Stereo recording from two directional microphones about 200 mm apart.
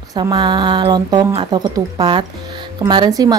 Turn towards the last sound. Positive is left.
turn(degrees=-20)  # may be behind; listen again after turning